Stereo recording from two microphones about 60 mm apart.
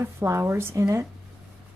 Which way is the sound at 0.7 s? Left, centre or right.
Right.